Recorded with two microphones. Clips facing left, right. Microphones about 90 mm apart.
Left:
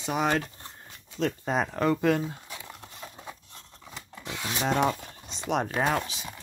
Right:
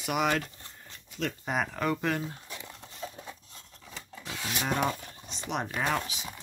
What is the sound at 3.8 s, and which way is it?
Rub, 5° left (ahead or behind).